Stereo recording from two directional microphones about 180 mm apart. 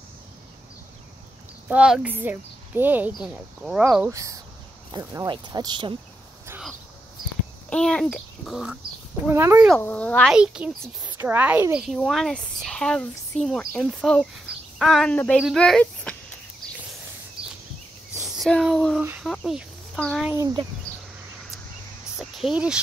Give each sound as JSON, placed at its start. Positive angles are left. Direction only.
{"t": 1.7, "sound": "speech", "side_deg": -5}
{"t": 4.1, "sound": "speech", "side_deg": -15}
{"t": 7.7, "sound": "speech", "side_deg": 5}
{"t": 9.3, "sound": "speech", "side_deg": -15}
{"t": 9.8, "sound": "speech", "side_deg": 10}
{"t": 10.3, "sound": "speech", "side_deg": -5}
{"t": 18.3, "sound": "a sound", "side_deg": 0}
{"t": 19.2, "sound": "speech", "side_deg": 0}
{"t": 20.2, "sound": "speech", "side_deg": -20}
{"t": 22.2, "sound": "a sound", "side_deg": -5}